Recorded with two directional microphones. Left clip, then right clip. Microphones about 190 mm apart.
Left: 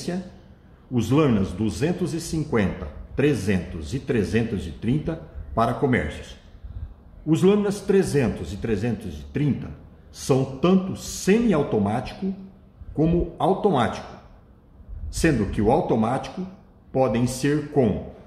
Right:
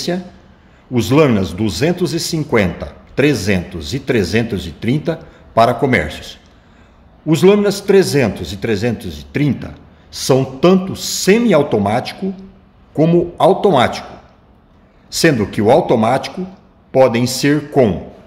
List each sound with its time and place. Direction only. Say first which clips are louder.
0.9 s a man's voice: right 9 dB; 45° right (ahead or behind)
7.2 s a man's voice: right 9 dB; 50° right (ahead or behind)
15.0 s a man's voice: right 9 dB; 45° right (ahead or behind)